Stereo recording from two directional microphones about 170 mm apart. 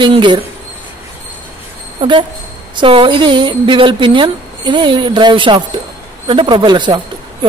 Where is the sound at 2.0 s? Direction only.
30° right (ahead or behind).